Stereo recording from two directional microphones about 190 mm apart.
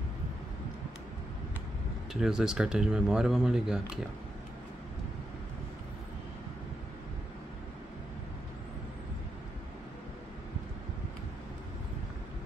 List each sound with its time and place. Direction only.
2.1 s speech: 5° right (ahead or behind)